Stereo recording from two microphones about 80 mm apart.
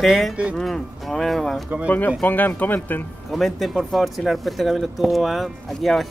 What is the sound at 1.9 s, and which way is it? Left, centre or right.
Speech, left.